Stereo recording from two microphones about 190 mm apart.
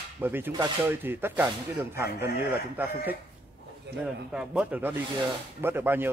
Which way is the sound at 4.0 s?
5° right (ahead or behind).